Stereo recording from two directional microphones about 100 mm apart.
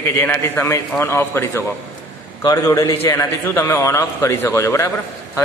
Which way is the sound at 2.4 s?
40° left (ahead or behind).